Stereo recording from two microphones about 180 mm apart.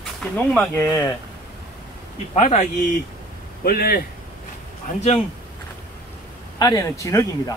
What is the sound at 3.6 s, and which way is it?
Speech, 55° left (ahead or behind).